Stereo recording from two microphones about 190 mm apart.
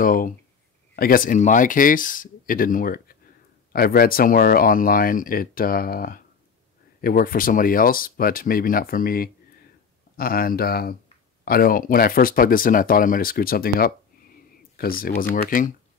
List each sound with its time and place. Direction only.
0.0 s speech: 45° left (ahead or behind)